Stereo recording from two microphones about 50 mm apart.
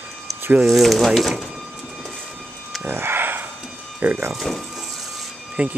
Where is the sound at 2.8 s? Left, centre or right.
Right.